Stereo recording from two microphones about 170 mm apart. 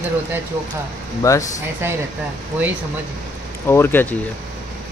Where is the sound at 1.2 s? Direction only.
20° left (ahead or behind).